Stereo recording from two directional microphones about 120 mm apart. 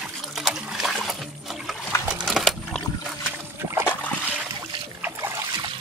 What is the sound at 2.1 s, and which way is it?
Coin, centre (ahead or behind).